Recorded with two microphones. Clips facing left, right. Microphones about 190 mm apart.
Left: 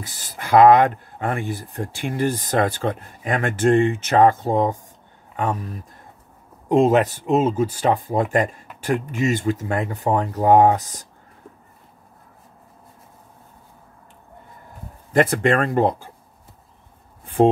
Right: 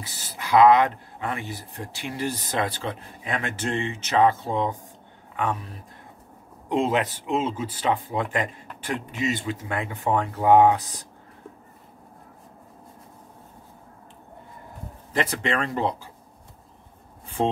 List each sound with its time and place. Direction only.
0.0 s speech: 50° left (ahead or behind)
15.1 s speech: 50° left (ahead or behind)
17.4 s speech: 50° left (ahead or behind)